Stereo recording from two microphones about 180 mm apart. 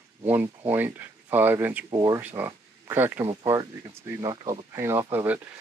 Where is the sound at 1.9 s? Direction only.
20° right (ahead or behind).